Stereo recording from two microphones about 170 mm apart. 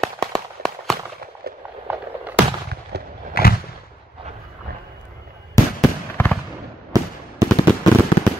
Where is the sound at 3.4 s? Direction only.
65° left (ahead or behind).